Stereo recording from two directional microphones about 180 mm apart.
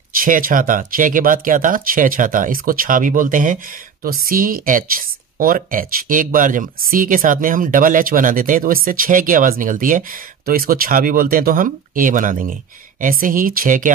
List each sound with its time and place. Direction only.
0.1 s speech: 50° right (ahead or behind)